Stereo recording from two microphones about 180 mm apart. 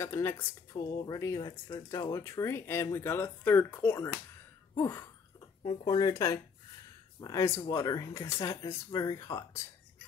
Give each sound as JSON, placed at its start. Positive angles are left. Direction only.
{"t": 0.0, "sound": "speech", "side_deg": 15}